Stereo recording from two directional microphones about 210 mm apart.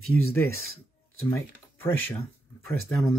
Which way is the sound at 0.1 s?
10° left (ahead or behind).